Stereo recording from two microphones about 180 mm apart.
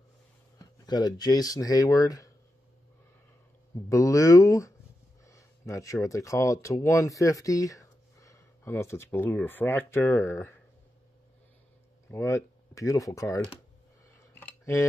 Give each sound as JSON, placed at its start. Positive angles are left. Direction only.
{"t": 0.6, "sound": "speech", "side_deg": 25}
{"t": 3.9, "sound": "speech", "side_deg": 15}
{"t": 12.1, "sound": "speech", "side_deg": 15}
{"t": 14.4, "sound": "a sound", "side_deg": 15}